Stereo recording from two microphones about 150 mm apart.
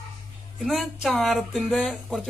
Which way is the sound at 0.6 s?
Centre (ahead or behind).